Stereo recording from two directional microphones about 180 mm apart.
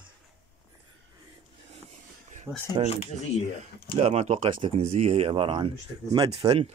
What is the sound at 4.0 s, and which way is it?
Speech, 35° right (ahead or behind).